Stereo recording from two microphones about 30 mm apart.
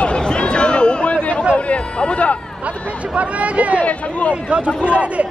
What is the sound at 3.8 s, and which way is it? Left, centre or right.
Speech, left.